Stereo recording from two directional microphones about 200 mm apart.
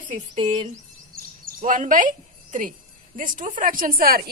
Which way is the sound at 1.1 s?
45° right (ahead or behind).